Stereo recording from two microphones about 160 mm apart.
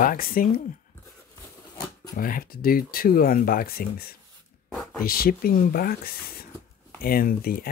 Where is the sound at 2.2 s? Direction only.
65° left (ahead or behind).